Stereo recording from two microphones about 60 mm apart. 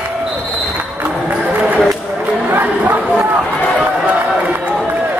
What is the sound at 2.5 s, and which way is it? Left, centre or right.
Chatter, right.